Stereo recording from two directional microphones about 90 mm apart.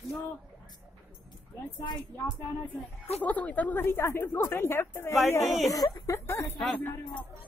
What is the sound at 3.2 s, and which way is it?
A woman's voice, 15° left (ahead or behind).